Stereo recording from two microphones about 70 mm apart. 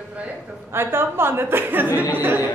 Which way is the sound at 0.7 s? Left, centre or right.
Right.